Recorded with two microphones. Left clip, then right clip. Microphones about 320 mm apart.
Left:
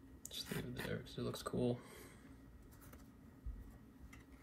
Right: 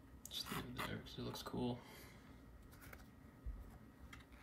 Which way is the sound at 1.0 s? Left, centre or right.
Right.